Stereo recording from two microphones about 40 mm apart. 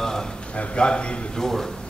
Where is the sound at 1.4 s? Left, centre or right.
Centre.